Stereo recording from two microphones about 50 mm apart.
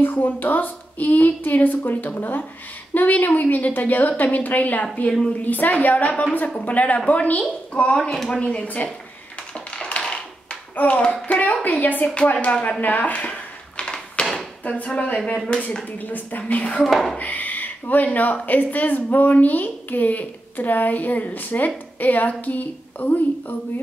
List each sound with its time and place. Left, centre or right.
0.0 s a woman's voice: left
8.0 s speech: centre
8.4 s a woman's voice: left
9.8 s tap: left
10.8 s a woman's voice: left
12.1 s a woman's voice: left
12.8 s a sound: left
14.7 s a woman's voice: left
16.0 s speech: left
16.9 s speech: centre
17.2 s speech: left